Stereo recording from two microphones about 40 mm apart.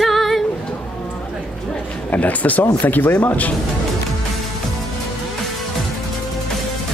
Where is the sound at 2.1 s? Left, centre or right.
Left.